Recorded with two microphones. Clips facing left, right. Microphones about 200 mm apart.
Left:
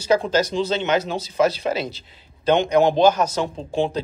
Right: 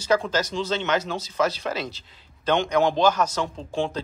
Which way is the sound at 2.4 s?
20° left (ahead or behind).